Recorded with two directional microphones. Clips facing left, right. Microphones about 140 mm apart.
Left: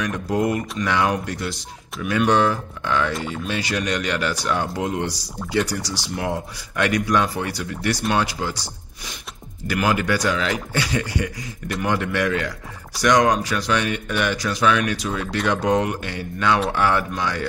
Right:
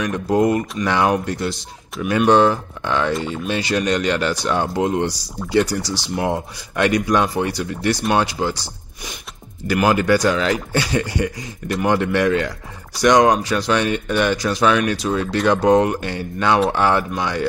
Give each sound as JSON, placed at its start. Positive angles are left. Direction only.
{"t": 0.0, "sound": "speech", "side_deg": -25}
{"t": 9.7, "sound": "speech", "side_deg": -30}